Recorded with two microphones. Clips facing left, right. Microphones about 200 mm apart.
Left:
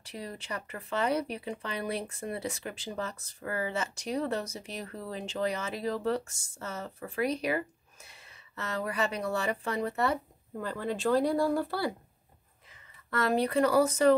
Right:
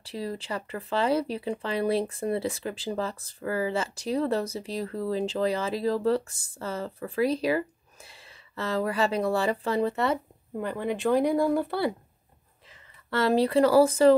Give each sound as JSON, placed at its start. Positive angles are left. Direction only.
{"t": 0.1, "sound": "speech", "side_deg": -30}
{"t": 10.6, "sound": "speech", "side_deg": -15}
{"t": 13.1, "sound": "speech", "side_deg": -30}